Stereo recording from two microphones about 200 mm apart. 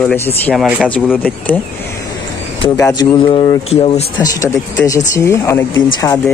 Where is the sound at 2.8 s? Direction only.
15° left (ahead or behind).